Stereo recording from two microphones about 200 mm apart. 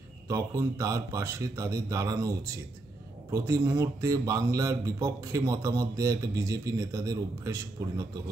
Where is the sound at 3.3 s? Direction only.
15° right (ahead or behind).